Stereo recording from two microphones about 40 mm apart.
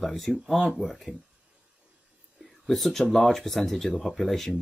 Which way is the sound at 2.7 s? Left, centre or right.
Centre.